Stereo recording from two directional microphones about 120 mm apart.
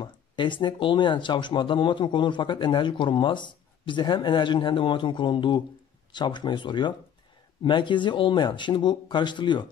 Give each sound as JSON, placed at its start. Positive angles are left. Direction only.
{"t": 0.0, "sound": "speech", "side_deg": 40}